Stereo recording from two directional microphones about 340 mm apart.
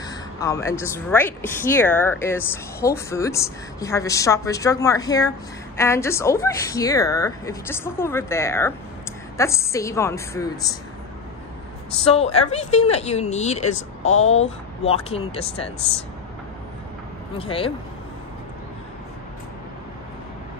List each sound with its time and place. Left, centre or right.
0.0 s speech: centre
12.0 s speech: centre
14.0 s speech: left
15.0 s speech: centre
17.4 s speech: centre